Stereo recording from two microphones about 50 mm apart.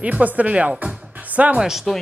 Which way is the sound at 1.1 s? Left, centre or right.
Right.